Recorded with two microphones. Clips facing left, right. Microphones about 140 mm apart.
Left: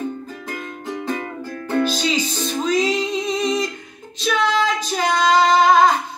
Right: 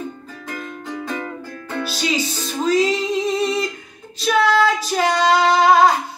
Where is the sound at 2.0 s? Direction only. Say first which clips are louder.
Left 1 dB; 5° right (ahead or behind).